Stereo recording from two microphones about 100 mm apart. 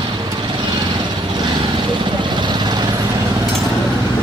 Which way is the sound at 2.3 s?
50° right (ahead or behind).